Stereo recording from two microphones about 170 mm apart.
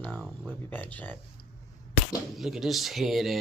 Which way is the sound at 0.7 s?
10° left (ahead or behind).